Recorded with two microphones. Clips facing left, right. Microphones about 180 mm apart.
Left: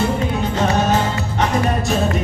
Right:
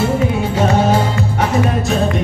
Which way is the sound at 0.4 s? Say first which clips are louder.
Right 3 dB; 10° right (ahead or behind).